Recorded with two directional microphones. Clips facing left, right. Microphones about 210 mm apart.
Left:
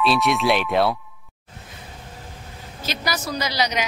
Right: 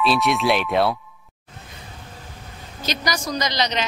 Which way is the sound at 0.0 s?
Centre (ahead or behind).